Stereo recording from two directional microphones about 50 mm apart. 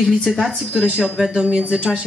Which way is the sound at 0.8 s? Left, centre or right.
Centre.